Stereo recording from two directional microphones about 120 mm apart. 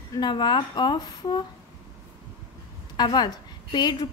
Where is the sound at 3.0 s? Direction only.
35° left (ahead or behind).